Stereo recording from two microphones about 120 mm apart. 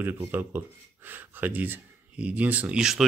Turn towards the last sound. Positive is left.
turn(degrees=-5)  # may be behind; listen again after turning